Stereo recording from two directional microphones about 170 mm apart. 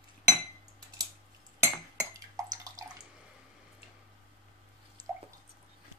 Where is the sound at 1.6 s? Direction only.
15° right (ahead or behind).